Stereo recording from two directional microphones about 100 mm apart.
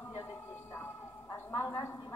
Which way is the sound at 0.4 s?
20° left (ahead or behind).